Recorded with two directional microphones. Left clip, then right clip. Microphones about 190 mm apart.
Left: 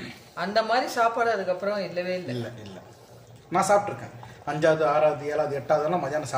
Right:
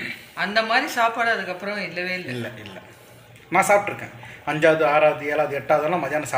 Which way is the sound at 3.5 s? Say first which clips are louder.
Right 4 dB; centre (ahead or behind).